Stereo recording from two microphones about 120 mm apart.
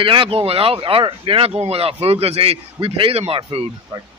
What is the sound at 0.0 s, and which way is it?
A man's voice, 45° right (ahead or behind).